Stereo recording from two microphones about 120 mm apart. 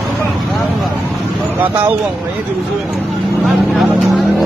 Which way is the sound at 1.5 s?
15° right (ahead or behind).